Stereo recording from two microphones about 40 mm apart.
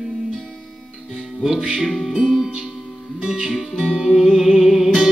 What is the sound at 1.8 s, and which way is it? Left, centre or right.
Music, centre.